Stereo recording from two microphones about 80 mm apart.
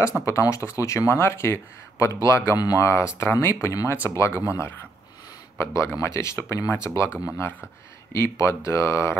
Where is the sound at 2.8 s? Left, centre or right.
Left.